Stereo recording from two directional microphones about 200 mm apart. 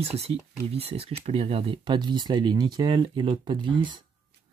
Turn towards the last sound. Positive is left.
turn(degrees=-25)  # may be behind; listen again after turning